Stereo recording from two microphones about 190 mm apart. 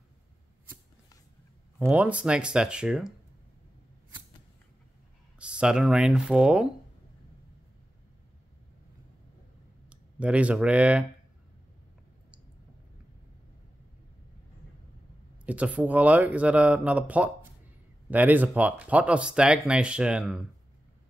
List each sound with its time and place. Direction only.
1.9 s speech: 5° right (ahead or behind)
5.4 s speech: 5° right (ahead or behind)
9.8 s speech: 5° right (ahead or behind)
15.4 s speech: 5° right (ahead or behind)